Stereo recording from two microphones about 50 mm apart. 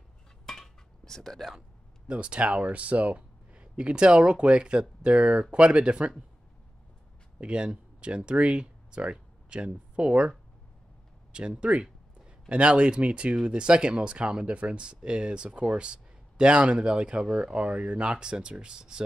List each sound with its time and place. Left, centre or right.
0.5 s cutlery: centre
2.0 s speech: right
7.3 s speech: right
11.3 s speech: right